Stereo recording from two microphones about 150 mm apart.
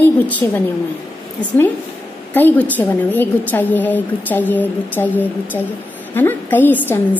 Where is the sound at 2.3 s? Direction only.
10° left (ahead or behind).